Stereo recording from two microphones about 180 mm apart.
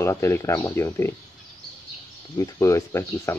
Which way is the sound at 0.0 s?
15° left (ahead or behind).